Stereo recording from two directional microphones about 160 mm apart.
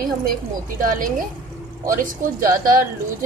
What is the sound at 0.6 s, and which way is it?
A woman's voice, 55° right (ahead or behind).